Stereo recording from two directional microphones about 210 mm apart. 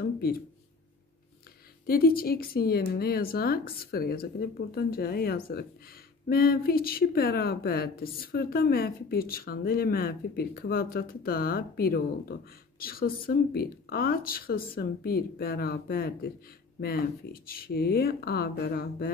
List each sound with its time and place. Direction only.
0.0 s speech: 45° left (ahead or behind)
1.9 s speech: 45° left (ahead or behind)